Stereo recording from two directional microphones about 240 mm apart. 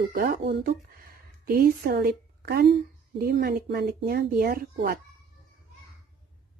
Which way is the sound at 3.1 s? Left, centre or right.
Right.